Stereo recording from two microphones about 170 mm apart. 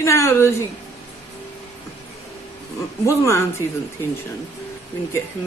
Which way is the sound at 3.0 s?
15° left (ahead or behind).